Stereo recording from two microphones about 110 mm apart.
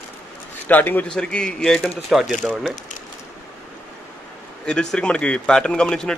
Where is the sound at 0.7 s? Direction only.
15° left (ahead or behind); by 2.7 s centre (ahead or behind).